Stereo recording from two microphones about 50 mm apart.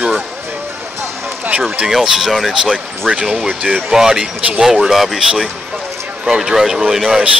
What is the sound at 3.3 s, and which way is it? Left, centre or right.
Speech, right.